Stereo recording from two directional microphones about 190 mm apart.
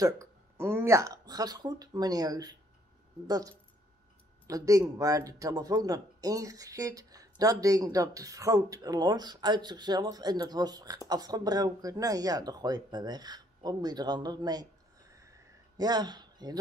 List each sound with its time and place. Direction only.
0.0 s speech: 15° right (ahead or behind)
15.8 s speech: 20° right (ahead or behind)